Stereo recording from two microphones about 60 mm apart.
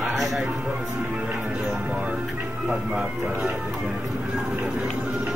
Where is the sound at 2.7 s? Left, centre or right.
Right.